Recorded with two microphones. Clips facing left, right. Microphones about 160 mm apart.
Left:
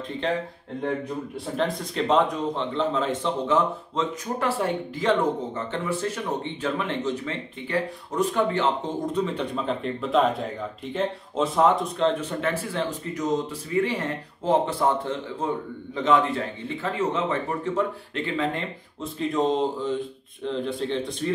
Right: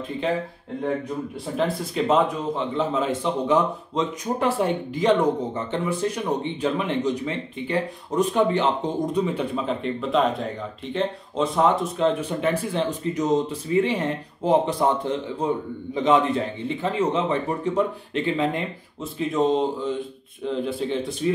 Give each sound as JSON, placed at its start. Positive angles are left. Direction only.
{"t": 1.6, "sound": "a man's voice", "side_deg": -5}
{"t": 19.1, "sound": "speech", "side_deg": 0}